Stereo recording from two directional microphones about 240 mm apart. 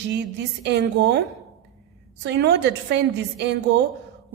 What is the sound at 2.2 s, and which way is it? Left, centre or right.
A woman's voice, right.